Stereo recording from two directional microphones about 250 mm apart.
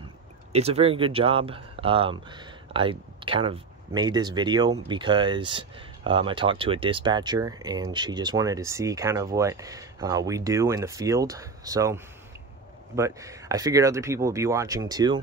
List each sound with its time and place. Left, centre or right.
0.5 s speech: right